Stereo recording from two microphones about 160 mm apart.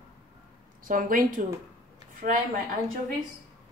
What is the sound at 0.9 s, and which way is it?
Speech, 60° right (ahead or behind).